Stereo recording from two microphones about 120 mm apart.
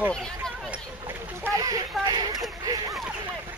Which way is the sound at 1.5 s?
30° right (ahead or behind).